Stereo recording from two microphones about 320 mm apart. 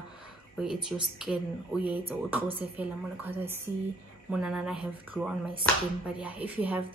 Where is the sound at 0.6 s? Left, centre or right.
Centre.